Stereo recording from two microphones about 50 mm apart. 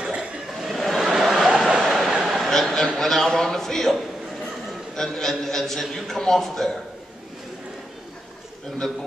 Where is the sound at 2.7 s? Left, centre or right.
Centre.